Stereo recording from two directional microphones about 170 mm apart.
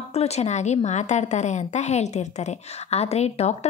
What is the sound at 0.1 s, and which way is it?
Speech, 40° left (ahead or behind).